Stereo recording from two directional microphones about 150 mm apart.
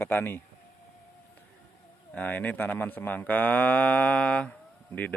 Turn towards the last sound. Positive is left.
turn(degrees=10)  # may be behind; listen again after turning